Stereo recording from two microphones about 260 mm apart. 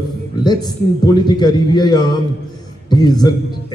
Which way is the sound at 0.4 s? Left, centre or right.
Centre.